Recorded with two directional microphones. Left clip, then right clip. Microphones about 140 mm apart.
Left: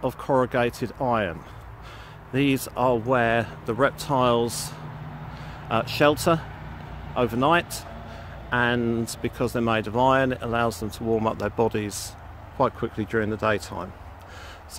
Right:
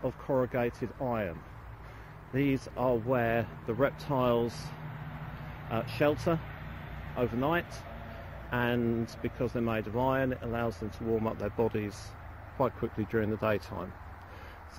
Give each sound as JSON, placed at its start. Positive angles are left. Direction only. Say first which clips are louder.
{"t": 0.0, "sound": "speech", "louder": "left 8 dB", "side_deg": 60}
{"t": 2.3, "sound": "speech", "louder": "left 7 dB", "side_deg": 60}
{"t": 5.7, "sound": "speech", "louder": "left 9 dB", "side_deg": 60}
{"t": 8.5, "sound": "speech", "louder": "left 8 dB", "side_deg": 35}
{"t": 9.2, "sound": "speech", "louder": "left 8 dB", "side_deg": 55}
{"t": 12.5, "sound": "speech", "louder": "left 7 dB", "side_deg": 35}